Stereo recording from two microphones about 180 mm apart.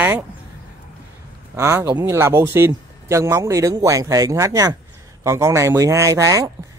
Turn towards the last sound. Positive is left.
turn(degrees=-20)  # may be behind; listen again after turning